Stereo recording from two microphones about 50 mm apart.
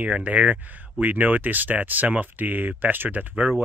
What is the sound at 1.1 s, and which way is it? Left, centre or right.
Speech, right.